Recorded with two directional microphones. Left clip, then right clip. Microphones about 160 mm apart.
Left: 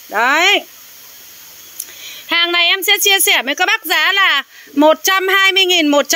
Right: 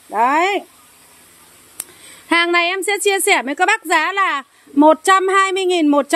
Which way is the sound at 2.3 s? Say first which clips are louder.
Left 2 dB; 35° right (ahead or behind).